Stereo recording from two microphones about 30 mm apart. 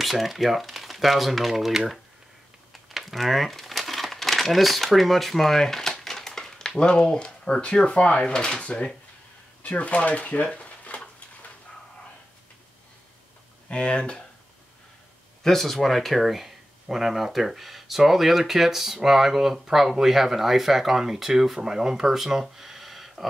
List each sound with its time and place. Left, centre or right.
0.0 s speech: centre
1.5 s speech: centre
2.7 s crumpling: centre
6.8 s speech: left
8.3 s speech: left
9.6 s speech: left
13.7 s speech: left
15.4 s speech: centre